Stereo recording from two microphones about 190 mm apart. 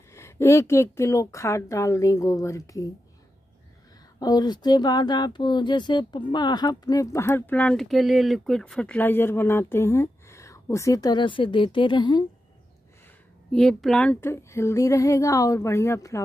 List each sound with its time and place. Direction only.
0.1 s speech: 15° left (ahead or behind)
4.2 s speech: 20° left (ahead or behind)
13.5 s speech: centre (ahead or behind)